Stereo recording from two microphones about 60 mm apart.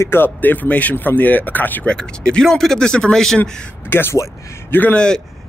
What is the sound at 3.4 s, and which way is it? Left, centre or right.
Speech, left.